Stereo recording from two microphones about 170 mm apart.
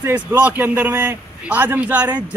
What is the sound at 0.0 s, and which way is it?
Speech, 10° right (ahead or behind).